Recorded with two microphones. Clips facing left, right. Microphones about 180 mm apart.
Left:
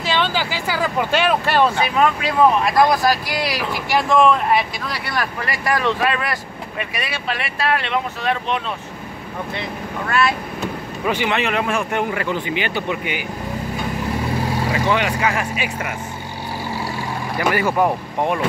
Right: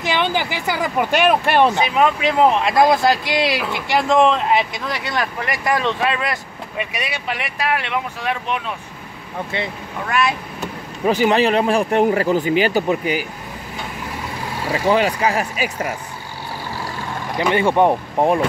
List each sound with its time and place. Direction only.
0.0 s speech: 15° right (ahead or behind)
10.0 s speech: 15° right (ahead or behind)
11.1 s speech: 40° right (ahead or behind)
14.7 s speech: 35° right (ahead or behind)
17.4 s speech: 25° right (ahead or behind)